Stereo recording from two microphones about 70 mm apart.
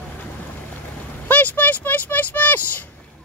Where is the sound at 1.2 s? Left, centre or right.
Left.